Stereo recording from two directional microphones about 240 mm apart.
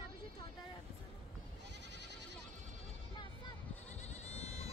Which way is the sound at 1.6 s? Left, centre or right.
Right.